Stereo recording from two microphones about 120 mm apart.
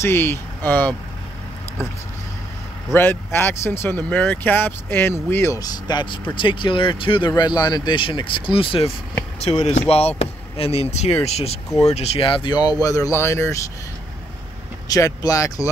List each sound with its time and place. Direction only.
0.0 s speech: 20° left (ahead or behind)
2.9 s speech: 20° left (ahead or behind); by 8.9 s 50° left (ahead or behind)
9.4 s speech: 60° left (ahead or behind); by 12.7 s 40° left (ahead or behind)
12.8 s speech: 30° left (ahead or behind)
14.9 s speech: 30° left (ahead or behind)